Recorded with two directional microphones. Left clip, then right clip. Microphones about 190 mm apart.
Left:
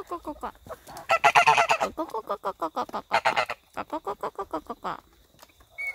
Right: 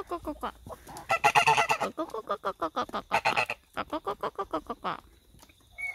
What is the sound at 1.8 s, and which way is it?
Chicken, 10° left (ahead or behind).